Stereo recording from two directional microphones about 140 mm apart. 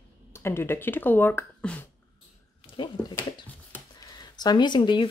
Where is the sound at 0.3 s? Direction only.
20° left (ahead or behind).